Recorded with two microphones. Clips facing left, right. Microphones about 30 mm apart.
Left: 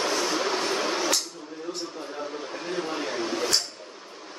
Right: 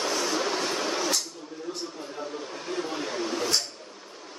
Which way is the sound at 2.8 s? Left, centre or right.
Centre.